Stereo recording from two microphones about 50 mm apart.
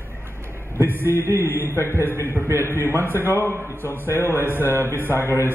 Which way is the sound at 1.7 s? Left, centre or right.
Left.